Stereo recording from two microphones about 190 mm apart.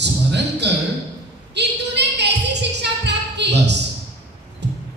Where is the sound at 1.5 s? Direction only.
65° right (ahead or behind).